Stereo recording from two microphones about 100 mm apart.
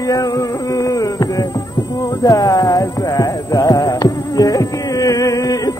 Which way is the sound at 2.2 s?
35° left (ahead or behind).